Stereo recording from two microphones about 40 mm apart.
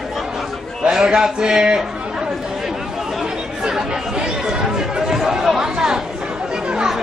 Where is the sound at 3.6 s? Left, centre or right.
Right.